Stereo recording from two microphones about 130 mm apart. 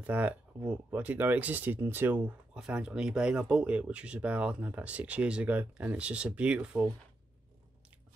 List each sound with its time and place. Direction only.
0.0 s speech: 15° right (ahead or behind)